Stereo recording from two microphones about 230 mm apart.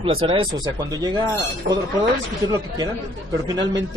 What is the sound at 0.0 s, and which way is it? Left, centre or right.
A man's voice, right.